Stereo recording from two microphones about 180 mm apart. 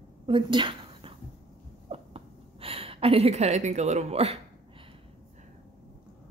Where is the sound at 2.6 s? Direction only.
30° right (ahead or behind).